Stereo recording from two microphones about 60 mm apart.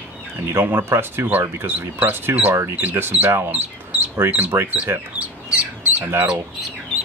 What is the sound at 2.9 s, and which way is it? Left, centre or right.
Speech, right.